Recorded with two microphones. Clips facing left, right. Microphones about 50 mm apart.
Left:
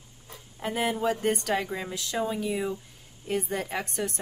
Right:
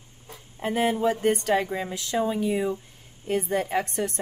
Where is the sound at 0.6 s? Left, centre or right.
Right.